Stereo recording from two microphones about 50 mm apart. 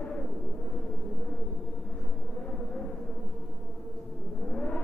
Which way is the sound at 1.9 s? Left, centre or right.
Centre.